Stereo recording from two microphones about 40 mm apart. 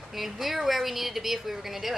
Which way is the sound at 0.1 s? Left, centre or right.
Centre.